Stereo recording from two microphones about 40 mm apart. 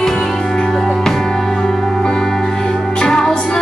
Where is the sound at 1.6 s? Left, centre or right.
Centre.